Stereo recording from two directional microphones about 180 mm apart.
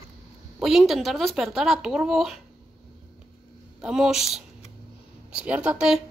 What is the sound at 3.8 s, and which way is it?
Speech, 5° right (ahead or behind).